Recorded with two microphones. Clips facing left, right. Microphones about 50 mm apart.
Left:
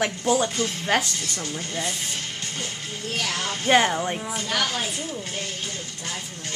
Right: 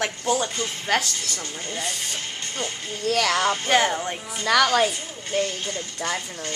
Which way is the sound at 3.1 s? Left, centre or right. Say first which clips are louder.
Right 7 dB; right.